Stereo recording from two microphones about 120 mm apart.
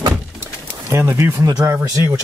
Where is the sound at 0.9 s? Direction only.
20° right (ahead or behind).